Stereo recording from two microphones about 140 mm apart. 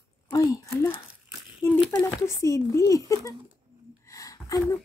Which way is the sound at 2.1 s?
20° left (ahead or behind).